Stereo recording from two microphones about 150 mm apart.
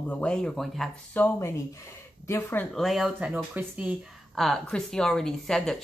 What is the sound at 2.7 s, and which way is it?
Speech, centre (ahead or behind).